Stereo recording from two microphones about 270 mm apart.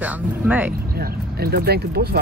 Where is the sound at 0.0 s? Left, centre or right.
Centre.